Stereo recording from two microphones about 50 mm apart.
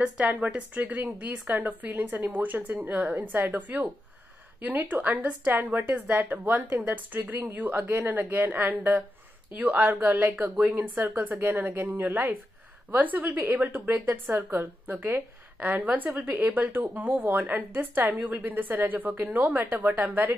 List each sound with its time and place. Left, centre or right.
0.6 s a woman's voice: right